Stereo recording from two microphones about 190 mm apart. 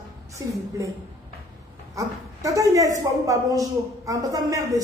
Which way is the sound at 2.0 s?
15° right (ahead or behind).